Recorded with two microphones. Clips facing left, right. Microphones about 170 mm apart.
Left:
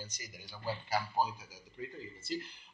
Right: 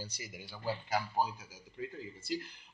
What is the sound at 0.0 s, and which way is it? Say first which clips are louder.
Speech: right 3 dB; 30° right (ahead or behind).